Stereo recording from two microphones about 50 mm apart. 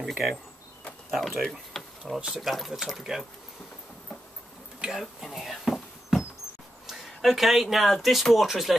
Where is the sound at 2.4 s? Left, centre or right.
Centre.